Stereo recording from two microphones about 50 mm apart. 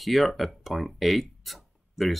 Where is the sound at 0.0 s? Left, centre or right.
Centre.